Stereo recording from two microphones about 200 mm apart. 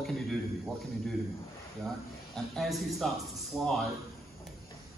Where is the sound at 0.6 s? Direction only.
Centre (ahead or behind).